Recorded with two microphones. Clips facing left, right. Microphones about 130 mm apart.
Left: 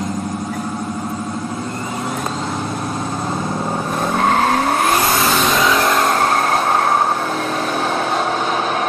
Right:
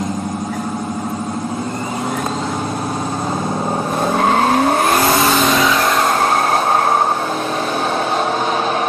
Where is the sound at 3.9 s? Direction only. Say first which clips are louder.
Right 1 dB; 5° right (ahead or behind).